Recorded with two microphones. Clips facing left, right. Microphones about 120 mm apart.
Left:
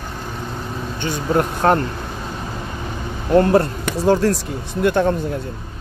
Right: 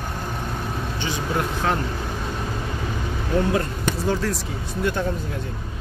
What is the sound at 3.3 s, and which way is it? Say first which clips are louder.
Speech: left 8 dB; 60° left (ahead or behind).